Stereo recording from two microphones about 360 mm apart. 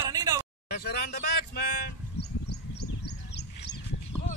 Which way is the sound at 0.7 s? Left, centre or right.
Left.